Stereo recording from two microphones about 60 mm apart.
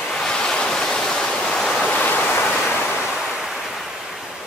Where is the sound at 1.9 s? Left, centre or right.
Left.